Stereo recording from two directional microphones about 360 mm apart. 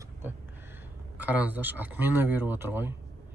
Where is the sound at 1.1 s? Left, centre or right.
Centre.